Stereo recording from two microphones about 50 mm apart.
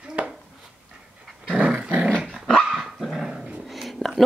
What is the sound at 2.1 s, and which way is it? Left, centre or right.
Dog, centre.